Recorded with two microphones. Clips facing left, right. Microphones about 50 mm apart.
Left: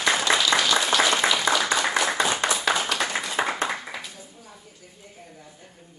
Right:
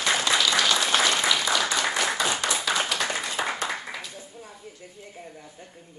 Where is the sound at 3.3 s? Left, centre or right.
Centre.